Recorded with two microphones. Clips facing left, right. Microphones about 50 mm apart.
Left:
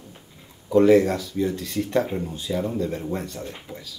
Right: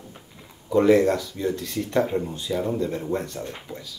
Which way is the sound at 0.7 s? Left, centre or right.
Centre.